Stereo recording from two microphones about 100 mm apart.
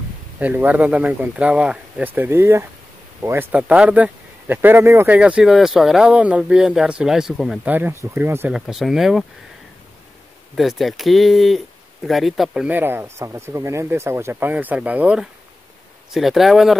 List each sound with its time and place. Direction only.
0.4 s speech: 15° right (ahead or behind)
3.5 s speech: 10° right (ahead or behind)
5.1 s speech: 10° right (ahead or behind)
7.6 s speech: 20° right (ahead or behind)
8.5 s speech: 5° right (ahead or behind)
10.5 s speech: centre (ahead or behind)
12.6 s speech: 20° right (ahead or behind)
16.1 s speech: centre (ahead or behind)